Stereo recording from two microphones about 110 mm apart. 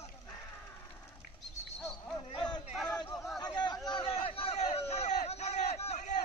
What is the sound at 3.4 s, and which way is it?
Chatter, 40° left (ahead or behind).